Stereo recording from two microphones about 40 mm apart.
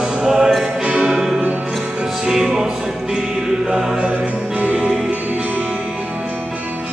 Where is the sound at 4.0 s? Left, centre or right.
Right.